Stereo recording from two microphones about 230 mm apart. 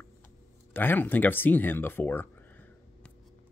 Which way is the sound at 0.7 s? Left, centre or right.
Centre.